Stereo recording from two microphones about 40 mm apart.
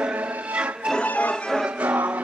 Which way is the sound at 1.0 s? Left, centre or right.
Left.